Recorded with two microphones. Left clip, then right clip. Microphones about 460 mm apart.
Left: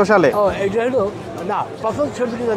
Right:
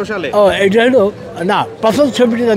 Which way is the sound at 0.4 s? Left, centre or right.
Right.